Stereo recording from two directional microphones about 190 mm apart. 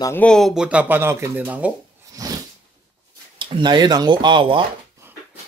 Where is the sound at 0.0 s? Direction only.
10° left (ahead or behind); by 1.7 s 10° right (ahead or behind).